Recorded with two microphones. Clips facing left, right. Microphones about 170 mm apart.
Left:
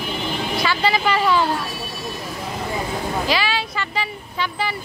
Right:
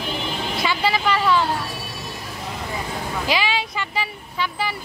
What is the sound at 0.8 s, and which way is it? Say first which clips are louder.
Speech: left 1 dB; 5° left (ahead or behind).